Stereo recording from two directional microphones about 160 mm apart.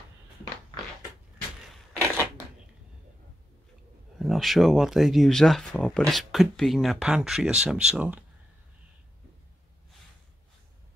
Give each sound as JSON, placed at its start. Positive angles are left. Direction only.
{"t": 2.0, "sound": "crushing", "side_deg": -15}
{"t": 4.2, "sound": "speech", "side_deg": 0}